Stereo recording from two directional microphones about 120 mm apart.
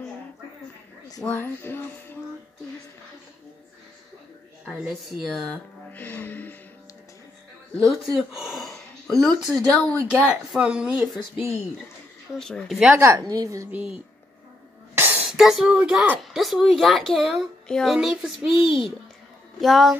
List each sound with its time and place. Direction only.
1.2 s music: 15° left (ahead or behind)
4.7 s speech: 5° right (ahead or behind)
5.5 s music: 15° left (ahead or behind)
7.8 s speech: centre (ahead or behind)
12.4 s speech: 5° left (ahead or behind)
13.3 s a woman's voice: 30° right (ahead or behind)
13.7 s speech: 15° right (ahead or behind)
15.0 s a sound: 15° right (ahead or behind)
15.2 s speech: centre (ahead or behind)
18.5 s a child's voice: 50° left (ahead or behind)
19.6 s speech: centre (ahead or behind)